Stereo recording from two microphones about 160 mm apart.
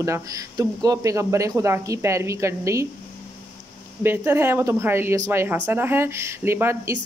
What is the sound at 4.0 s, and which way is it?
Speech, 15° right (ahead or behind).